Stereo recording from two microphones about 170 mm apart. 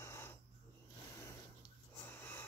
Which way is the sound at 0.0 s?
15° left (ahead or behind).